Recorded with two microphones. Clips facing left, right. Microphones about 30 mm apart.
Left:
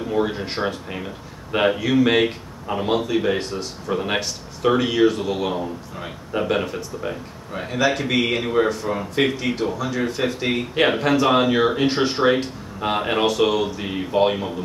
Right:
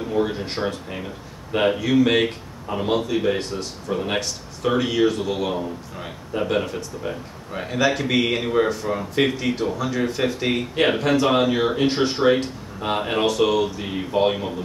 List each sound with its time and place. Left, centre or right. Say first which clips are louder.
0.1 s speech: left 1 dB; centre